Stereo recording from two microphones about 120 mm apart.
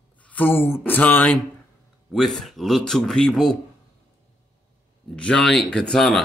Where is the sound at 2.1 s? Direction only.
Centre (ahead or behind).